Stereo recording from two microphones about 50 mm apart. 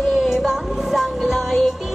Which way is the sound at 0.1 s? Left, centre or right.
Centre.